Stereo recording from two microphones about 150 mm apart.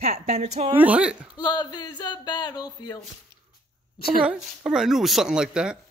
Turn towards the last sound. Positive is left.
turn(degrees=-5)  # may be behind; listen again after turning